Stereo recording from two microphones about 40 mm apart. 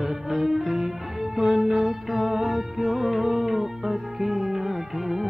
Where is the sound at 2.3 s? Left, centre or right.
Right.